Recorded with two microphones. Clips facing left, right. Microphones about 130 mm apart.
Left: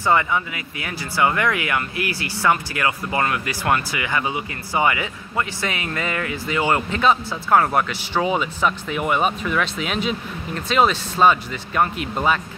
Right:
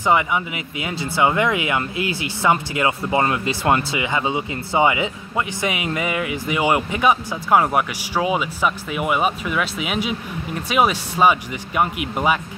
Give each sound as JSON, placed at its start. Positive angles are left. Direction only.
{"t": 0.0, "sound": "speech", "side_deg": -15}